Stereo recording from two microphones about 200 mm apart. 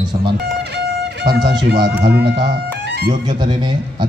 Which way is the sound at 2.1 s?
55° right (ahead or behind).